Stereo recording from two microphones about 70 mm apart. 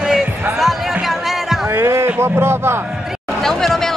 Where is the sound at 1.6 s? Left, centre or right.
Right.